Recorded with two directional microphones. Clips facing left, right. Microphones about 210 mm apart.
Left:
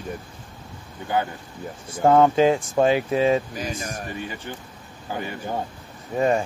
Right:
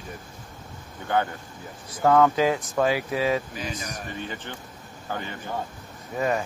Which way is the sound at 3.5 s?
45° left (ahead or behind).